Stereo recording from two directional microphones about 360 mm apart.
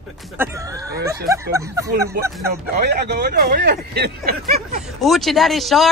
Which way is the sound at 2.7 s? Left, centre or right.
Right.